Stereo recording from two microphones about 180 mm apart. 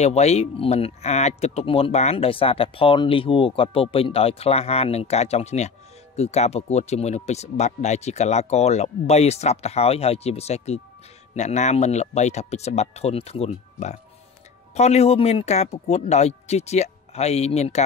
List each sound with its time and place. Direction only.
0.0 s speech: 35° left (ahead or behind)